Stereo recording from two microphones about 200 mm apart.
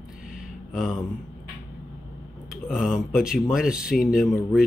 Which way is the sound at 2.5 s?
5° right (ahead or behind).